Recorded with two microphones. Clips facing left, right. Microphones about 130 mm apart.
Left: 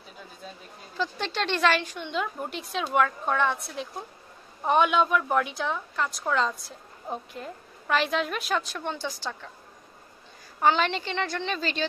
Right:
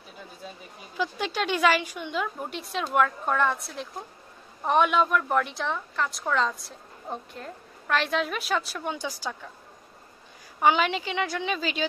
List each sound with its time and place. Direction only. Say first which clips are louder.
0.9 s a woman's voice: right 1 dB; 10° right (ahead or behind)
10.6 s speech: right 1 dB; 10° right (ahead or behind)